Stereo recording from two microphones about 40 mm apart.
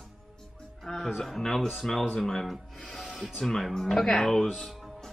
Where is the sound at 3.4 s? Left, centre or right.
Centre.